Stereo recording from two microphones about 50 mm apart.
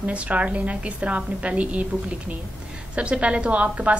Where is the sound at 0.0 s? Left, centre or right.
Right.